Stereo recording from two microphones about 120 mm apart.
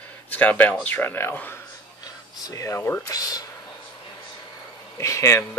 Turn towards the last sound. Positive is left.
turn(degrees=25)  # may be behind; listen again after turning